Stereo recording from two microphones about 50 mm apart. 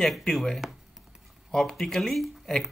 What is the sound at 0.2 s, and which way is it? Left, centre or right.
Speech, centre.